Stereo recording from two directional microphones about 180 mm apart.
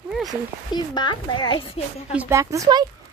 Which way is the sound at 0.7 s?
25° left (ahead or behind).